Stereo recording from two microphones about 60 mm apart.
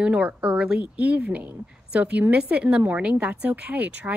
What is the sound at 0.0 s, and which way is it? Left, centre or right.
A woman's voice, centre.